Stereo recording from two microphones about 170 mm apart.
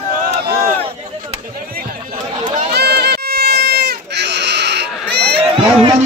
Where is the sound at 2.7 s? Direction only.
75° right (ahead or behind).